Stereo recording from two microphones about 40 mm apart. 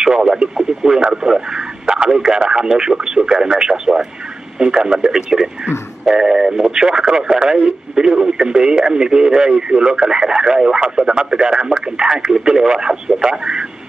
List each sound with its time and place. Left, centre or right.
0.0 s speech: centre